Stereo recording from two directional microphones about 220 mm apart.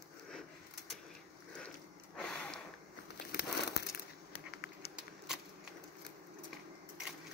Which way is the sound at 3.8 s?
50° left (ahead or behind).